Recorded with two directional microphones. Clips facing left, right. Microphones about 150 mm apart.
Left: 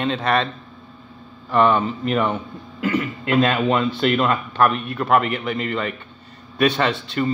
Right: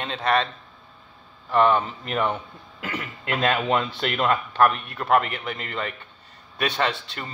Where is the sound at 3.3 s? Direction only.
55° right (ahead or behind).